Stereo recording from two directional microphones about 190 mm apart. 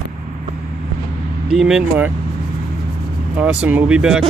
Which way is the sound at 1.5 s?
Centre (ahead or behind).